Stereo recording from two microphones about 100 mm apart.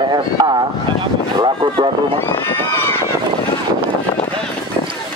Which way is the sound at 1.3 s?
45° right (ahead or behind).